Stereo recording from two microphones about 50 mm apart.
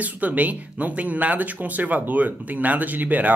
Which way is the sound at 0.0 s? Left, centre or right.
Right.